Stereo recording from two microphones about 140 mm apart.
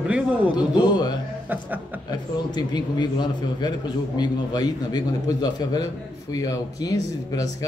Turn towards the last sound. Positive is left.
turn(degrees=25)  # may be behind; listen again after turning